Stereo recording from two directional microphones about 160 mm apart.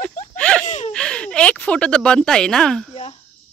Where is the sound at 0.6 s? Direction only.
45° left (ahead or behind).